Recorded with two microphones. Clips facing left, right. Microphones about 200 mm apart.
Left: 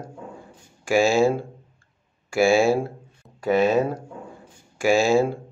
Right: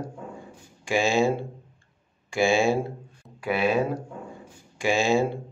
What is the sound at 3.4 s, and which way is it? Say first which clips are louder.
Speech: left 5 dB; 40° left (ahead or behind).